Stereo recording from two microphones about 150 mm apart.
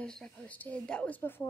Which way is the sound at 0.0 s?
5° left (ahead or behind).